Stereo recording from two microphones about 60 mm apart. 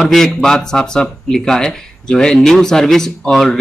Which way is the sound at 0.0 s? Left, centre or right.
Centre.